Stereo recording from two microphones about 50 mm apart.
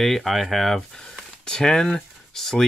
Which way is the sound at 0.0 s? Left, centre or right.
Centre.